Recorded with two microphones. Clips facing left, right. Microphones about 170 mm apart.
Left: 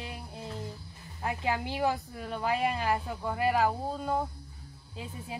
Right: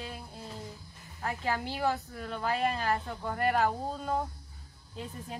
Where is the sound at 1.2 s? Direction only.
15° left (ahead or behind).